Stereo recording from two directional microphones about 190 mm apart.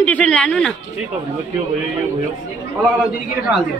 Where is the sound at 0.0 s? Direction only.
5° left (ahead or behind).